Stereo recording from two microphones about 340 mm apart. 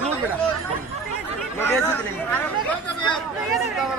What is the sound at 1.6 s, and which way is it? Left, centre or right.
Speech, centre.